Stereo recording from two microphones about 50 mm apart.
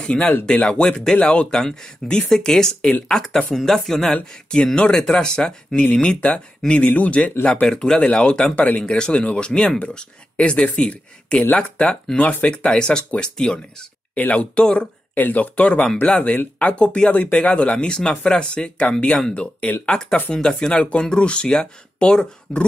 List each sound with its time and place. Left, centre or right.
0.0 s speech: centre
1.5 s speech: centre
7.6 s speech: centre
8.5 s speech: left
8.8 s speech: centre
12.2 s speech: left
12.4 s speech: centre
14.1 s speech: left
15.1 s speech: left; by 22.7 s centre